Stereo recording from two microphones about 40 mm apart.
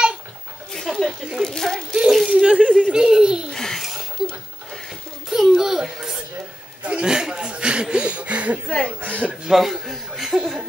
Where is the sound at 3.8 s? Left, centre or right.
Centre.